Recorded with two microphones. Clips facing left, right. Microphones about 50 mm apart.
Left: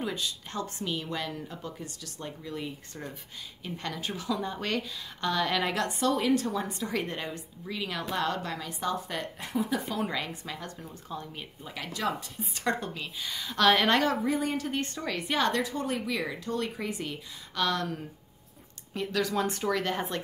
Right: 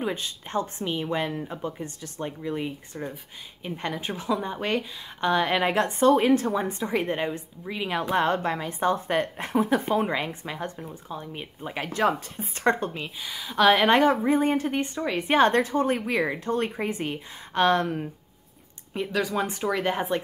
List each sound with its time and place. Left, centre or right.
0.0 s speech: right
11.6 s speech: right
13.2 s speech: centre; by 14.8 s right
14.8 s speech: centre
15.1 s speech: right
18.9 s speech: centre